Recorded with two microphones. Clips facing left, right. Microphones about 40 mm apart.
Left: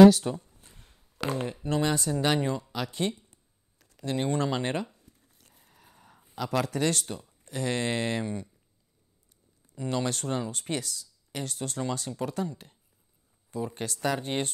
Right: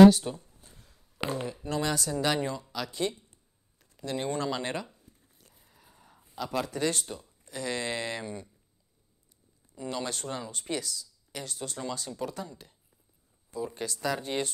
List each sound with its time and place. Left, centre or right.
0.3 s speech: left
0.6 s a sound: left
1.3 s speech: left
1.7 s speech: left
5.4 s a sound: left
6.3 s speech: left
7.4 s speech: left
9.8 s speech: left
13.7 s speech: left